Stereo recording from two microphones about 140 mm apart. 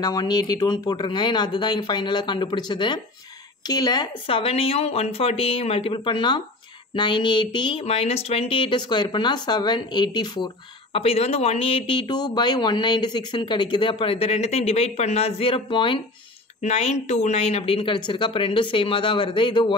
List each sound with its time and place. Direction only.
0.0 s speech: 30° left (ahead or behind)
16.6 s speech: 50° left (ahead or behind); by 19.7 s 35° left (ahead or behind)